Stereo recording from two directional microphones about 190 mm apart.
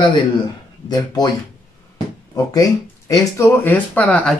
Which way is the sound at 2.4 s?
15° left (ahead or behind).